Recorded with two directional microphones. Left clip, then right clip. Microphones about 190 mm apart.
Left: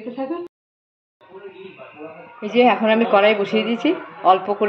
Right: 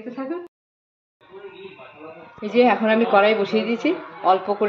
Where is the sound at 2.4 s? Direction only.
5° left (ahead or behind).